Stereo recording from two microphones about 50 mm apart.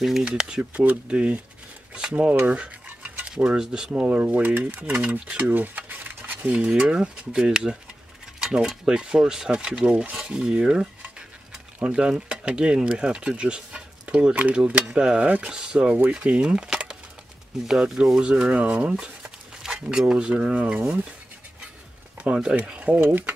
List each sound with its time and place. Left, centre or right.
0.2 s speech: centre
2.4 s a sound: right
3.3 s speech: centre
4.1 s speech: right
4.8 s speech: right
5.5 s a sound: right
6.4 s speech: centre
8.4 s mechanisms: centre
8.6 s speech: centre
22.3 s speech: centre
22.8 s speech: right